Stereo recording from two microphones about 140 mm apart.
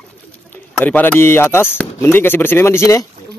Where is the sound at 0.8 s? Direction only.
15° left (ahead or behind).